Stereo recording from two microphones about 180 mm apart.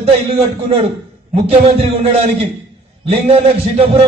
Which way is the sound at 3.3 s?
35° right (ahead or behind).